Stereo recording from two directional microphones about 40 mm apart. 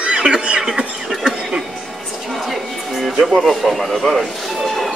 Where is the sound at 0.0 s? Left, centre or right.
Right.